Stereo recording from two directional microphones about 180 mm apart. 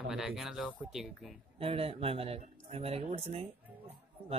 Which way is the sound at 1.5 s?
30° right (ahead or behind).